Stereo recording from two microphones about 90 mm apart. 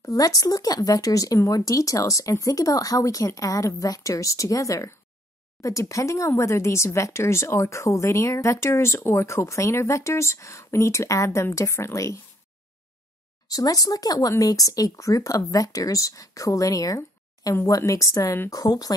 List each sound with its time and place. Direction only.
0.0 s speech: 40° left (ahead or behind)
13.5 s speech: 45° left (ahead or behind)